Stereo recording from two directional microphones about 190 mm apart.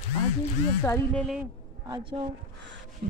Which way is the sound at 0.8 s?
10° left (ahead or behind).